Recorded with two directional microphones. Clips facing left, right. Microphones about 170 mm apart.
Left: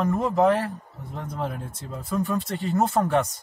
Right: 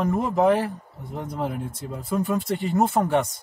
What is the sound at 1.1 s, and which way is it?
Speech, 20° right (ahead or behind).